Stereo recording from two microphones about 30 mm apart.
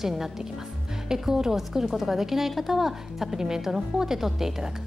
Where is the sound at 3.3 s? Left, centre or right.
Centre.